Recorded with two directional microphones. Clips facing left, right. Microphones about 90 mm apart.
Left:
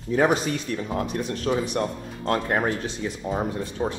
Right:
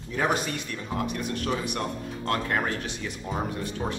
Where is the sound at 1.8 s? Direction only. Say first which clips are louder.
Left 4 dB; 30° left (ahead or behind).